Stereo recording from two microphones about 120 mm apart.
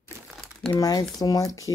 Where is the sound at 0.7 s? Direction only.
30° left (ahead or behind).